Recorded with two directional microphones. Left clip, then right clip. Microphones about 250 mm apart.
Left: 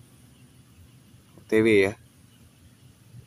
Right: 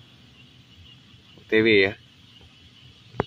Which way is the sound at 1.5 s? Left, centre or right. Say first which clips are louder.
Right 2 dB; centre.